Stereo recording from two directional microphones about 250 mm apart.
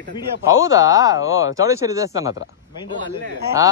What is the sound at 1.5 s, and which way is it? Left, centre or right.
Speech, centre.